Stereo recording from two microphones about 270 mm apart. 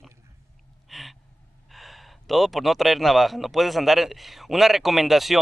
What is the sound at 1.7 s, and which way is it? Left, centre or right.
Speech, centre.